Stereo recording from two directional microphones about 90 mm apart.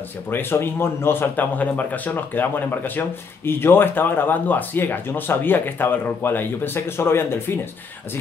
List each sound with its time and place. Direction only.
0.3 s a man's voice: 25° left (ahead or behind)